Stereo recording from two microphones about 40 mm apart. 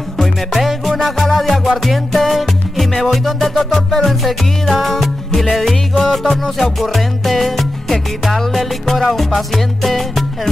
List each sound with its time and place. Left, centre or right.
0.2 s music: centre